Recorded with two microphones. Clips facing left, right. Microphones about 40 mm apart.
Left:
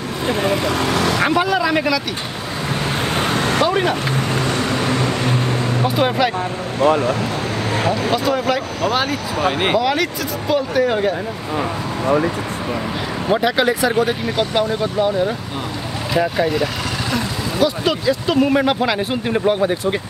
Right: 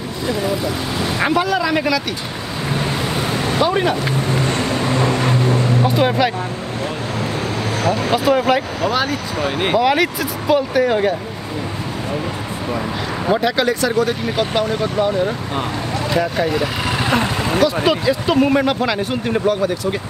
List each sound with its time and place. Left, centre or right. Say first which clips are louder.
0.3 s speech: left 2 dB; left
1.3 s speech: even; centre
3.1 s vehicle: left 2 dB; left
3.6 s speech: right 2 dB; centre
5.9 s speech: left 1 dB; centre
8.1 s speech: right 3 dB; centre
8.8 s speech: even; centre
9.8 s speech: right 3 dB; centre
13.3 s speech: left 1 dB; centre
14.2 s speech: even; centre
17.8 s speech: right 2 dB; centre
18.7 s speech: left 1 dB; centre
19.4 s speech: left 3 dB; left